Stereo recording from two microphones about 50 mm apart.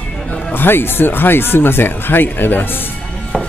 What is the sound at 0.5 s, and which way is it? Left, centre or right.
Speech, left.